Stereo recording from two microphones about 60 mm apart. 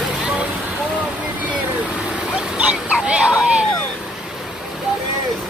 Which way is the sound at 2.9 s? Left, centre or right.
Centre.